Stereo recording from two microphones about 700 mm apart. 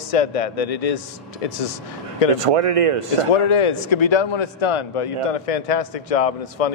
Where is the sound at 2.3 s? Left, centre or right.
Right.